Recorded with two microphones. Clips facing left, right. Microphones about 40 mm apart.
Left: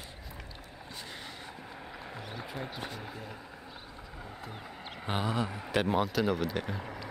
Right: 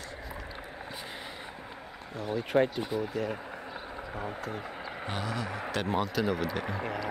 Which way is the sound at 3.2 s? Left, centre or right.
Right.